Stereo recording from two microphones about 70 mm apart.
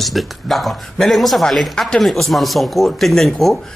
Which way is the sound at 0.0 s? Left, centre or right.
Centre.